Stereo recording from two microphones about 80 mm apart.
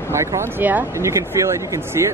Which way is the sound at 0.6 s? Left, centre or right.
Right.